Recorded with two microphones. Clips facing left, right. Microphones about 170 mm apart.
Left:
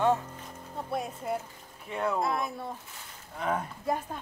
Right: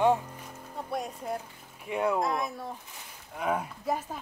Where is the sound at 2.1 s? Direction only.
Centre (ahead or behind).